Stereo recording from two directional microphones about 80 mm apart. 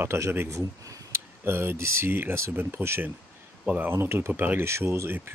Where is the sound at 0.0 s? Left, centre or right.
Right.